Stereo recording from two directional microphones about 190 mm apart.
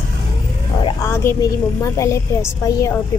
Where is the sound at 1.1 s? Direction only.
15° left (ahead or behind).